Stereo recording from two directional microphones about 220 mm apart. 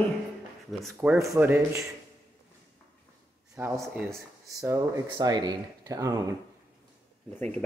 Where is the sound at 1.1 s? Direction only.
15° right (ahead or behind).